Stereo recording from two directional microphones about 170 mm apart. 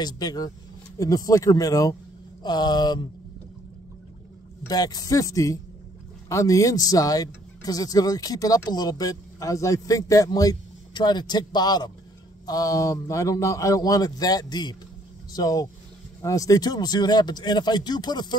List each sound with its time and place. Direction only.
0.0 s speech: 25° left (ahead or behind)
4.6 s speech: 20° left (ahead or behind)